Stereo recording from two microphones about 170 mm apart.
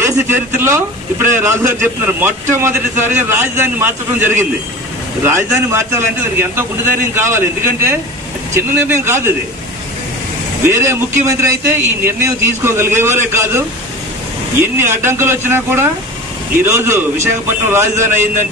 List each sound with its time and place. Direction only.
0.6 s a man's voice: 15° right (ahead or behind)
10.6 s a man's voice: 15° right (ahead or behind)
14.8 s a man's voice: 15° right (ahead or behind)